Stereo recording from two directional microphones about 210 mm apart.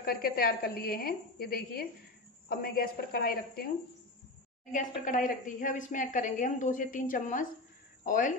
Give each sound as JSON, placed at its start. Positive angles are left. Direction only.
{"t": 0.0, "sound": "a woman's voice", "side_deg": 45}
{"t": 4.7, "sound": "a woman's voice", "side_deg": 40}